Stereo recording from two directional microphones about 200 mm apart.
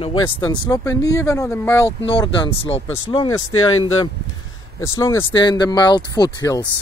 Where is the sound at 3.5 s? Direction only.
90° left.